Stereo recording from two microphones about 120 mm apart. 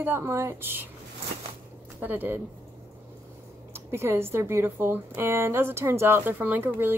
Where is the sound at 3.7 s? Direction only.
20° right (ahead or behind).